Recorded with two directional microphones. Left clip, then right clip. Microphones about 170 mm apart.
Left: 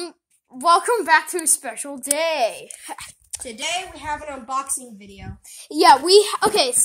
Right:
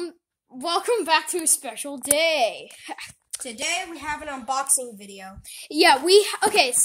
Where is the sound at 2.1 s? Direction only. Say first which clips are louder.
Even; 5° right (ahead or behind).